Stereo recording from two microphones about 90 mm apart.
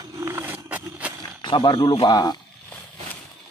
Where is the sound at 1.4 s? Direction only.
65° left (ahead or behind); by 2.3 s 50° left (ahead or behind).